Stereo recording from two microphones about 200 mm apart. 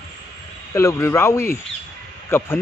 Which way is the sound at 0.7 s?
15° left (ahead or behind).